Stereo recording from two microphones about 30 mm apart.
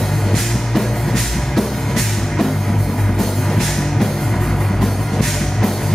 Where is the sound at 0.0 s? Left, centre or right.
Centre.